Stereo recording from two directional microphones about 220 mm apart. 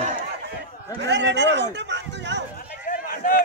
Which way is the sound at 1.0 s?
50° right (ahead or behind).